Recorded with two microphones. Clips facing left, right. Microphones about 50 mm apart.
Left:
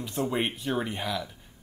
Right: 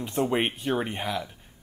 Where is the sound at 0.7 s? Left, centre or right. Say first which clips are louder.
Right 2 dB; right.